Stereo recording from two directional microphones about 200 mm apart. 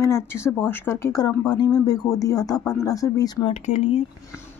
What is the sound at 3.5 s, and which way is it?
Speech, 35° left (ahead or behind).